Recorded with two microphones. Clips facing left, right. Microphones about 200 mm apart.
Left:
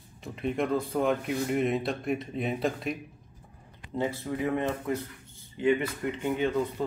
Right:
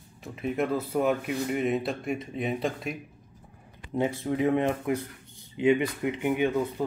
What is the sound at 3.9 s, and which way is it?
Speech, 15° right (ahead or behind).